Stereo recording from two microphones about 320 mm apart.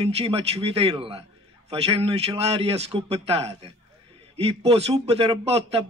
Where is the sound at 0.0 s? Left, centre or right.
Centre.